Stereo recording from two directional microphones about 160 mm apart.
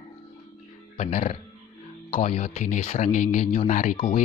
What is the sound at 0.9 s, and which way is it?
Speech, 45° left (ahead or behind).